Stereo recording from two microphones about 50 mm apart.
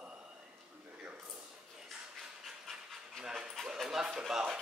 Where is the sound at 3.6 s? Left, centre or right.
Centre.